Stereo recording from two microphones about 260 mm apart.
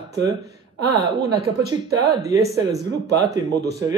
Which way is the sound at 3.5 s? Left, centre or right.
Right.